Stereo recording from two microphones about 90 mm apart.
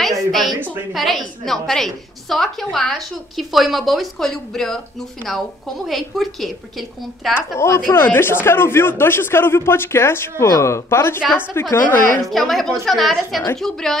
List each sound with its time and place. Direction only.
0.0 s a sound: centre (ahead or behind)
0.9 s a woman's voice: centre (ahead or behind)
7.3 s speech: 30° left (ahead or behind)
12.3 s a woman's voice: centre (ahead or behind)